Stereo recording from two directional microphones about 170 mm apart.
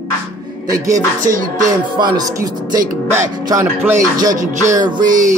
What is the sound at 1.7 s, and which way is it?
Music, 25° right (ahead or behind).